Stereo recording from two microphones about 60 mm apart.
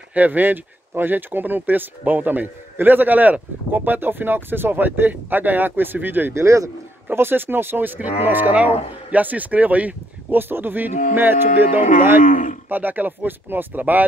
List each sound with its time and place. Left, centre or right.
0.1 s speech: right
6.3 s speech: right
7.1 s speech: right